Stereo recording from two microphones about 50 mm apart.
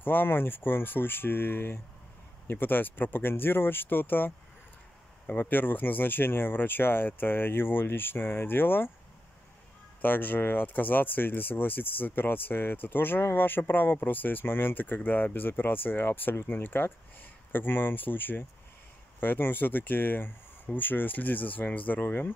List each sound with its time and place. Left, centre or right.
0.0 s speech: left
5.3 s speech: left
10.0 s speech: left